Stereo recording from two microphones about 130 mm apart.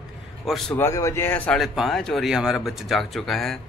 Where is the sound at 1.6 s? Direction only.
Centre (ahead or behind).